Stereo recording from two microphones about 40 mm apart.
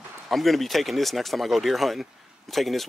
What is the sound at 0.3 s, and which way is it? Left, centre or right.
Speech, centre.